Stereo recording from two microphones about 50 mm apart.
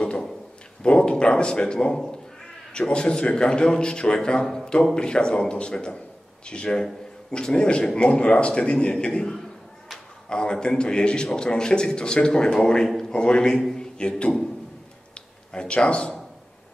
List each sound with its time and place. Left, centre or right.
0.8 s a man's voice: centre
10.3 s a man's voice: centre
13.7 s a sound: centre
15.5 s a man's voice: centre